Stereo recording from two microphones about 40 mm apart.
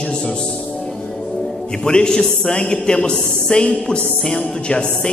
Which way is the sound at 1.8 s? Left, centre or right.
Centre.